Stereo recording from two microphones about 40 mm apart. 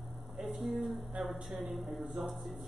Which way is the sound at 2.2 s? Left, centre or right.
Right.